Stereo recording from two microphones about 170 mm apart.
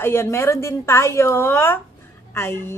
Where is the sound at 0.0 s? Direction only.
15° left (ahead or behind).